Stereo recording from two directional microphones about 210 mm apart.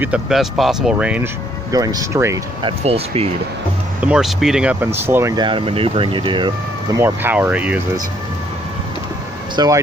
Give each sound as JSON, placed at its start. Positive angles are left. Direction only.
{"t": 0.0, "sound": "speech", "side_deg": -5}
{"t": 1.7, "sound": "speech", "side_deg": -15}
{"t": 2.8, "sound": "speech", "side_deg": -30}
{"t": 4.0, "sound": "speech", "side_deg": -5}
{"t": 7.0, "sound": "speech", "side_deg": -10}
{"t": 9.6, "sound": "speech", "side_deg": -20}